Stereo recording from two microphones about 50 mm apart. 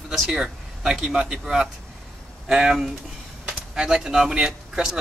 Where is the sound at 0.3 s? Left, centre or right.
Centre.